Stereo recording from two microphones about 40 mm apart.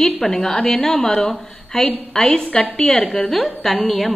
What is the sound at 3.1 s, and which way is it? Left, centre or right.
A woman's voice, centre.